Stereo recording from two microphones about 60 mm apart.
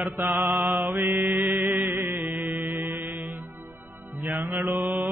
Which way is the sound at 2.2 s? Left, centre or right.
Right.